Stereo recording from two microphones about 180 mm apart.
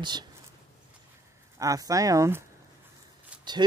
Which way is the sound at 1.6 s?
20° right (ahead or behind).